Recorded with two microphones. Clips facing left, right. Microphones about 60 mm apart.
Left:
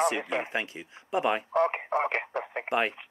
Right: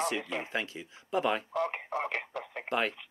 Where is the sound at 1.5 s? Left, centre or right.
Left.